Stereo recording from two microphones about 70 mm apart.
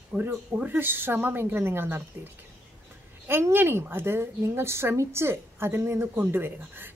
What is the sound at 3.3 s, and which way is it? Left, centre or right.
Speech, right.